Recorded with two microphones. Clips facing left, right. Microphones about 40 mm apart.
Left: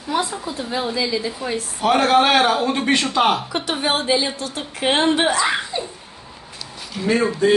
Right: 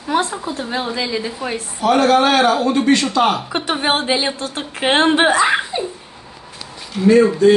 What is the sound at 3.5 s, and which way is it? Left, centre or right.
A woman's voice, right.